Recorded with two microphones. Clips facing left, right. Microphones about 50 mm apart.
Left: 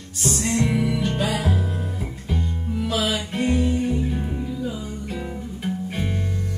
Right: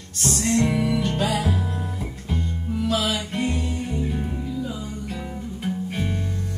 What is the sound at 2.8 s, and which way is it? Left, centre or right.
Music, centre.